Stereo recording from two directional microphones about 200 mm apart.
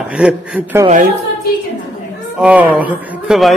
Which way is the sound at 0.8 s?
40° right (ahead or behind).